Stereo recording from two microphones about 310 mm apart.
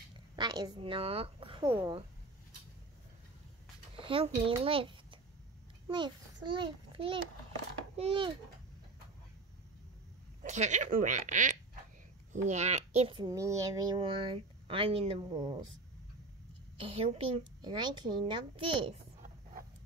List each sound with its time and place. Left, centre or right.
0.1 s speech: centre
4.0 s a child's voice: centre
10.4 s a child's voice: right
16.7 s a child's voice: centre